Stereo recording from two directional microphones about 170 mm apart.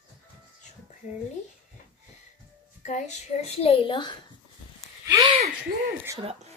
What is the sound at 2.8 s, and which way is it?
A woman's voice, 45° left (ahead or behind).